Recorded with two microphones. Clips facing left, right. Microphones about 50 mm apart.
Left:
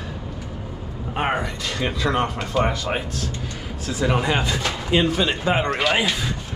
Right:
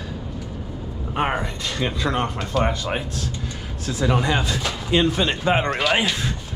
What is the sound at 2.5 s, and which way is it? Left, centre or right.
Speech, centre.